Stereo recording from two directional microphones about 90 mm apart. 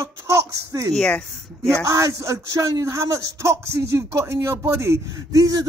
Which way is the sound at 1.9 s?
35° right (ahead or behind).